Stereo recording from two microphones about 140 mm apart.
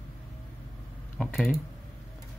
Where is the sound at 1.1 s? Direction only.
Centre (ahead or behind).